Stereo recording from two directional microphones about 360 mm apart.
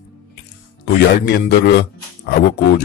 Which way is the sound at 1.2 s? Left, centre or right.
Left.